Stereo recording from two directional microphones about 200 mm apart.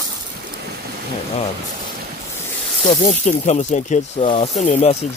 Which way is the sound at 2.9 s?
35° left (ahead or behind).